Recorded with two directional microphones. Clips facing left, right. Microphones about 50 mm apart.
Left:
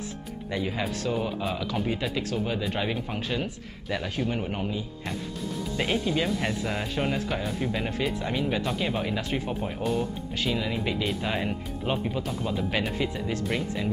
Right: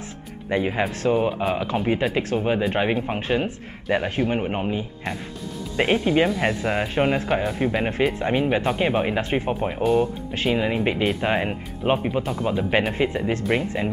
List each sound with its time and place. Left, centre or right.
0.5 s speech: right